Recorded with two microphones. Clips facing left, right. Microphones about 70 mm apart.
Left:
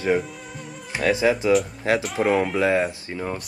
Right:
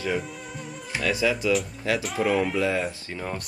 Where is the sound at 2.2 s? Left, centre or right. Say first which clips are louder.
Left 2 dB; left.